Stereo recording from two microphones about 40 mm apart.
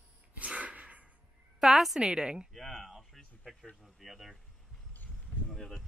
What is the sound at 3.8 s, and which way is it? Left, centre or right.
Speech, centre.